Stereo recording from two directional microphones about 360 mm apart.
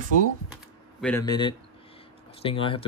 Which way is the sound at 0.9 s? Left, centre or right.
Centre.